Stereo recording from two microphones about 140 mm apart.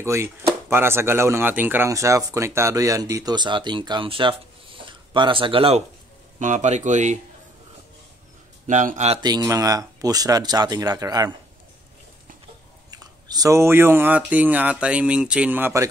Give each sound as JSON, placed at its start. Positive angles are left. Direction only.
{"t": 0.0, "sound": "speech", "side_deg": -20}
{"t": 6.4, "sound": "speech", "side_deg": -60}
{"t": 8.6, "sound": "speech", "side_deg": -60}
{"t": 9.2, "sound": "speech", "side_deg": -30}
{"t": 12.9, "sound": "speech", "side_deg": -25}